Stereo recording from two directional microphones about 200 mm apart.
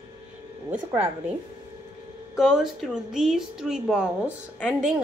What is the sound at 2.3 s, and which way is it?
A woman's voice, centre (ahead or behind).